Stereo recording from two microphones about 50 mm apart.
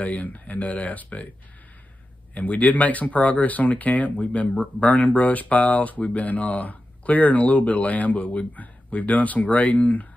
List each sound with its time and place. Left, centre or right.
0.0 s speech: left
2.3 s speech: left